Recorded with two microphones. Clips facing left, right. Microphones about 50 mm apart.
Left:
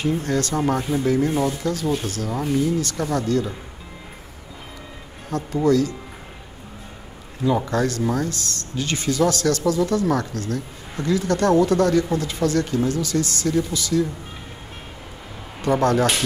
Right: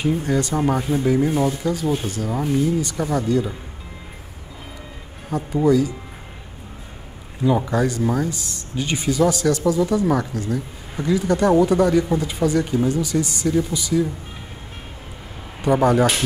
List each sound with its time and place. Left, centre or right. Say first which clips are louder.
0.0 s speech: right 1 dB; centre
5.3 s speech: right 1 dB; centre
7.4 s speech: right 1 dB; centre
15.6 s speech: right 2 dB; centre